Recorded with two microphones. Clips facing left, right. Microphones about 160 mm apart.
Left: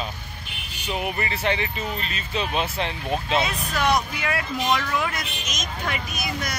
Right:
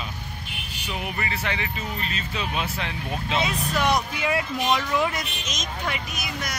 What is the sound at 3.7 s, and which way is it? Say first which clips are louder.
Speech: left 2 dB; 15° right (ahead or behind).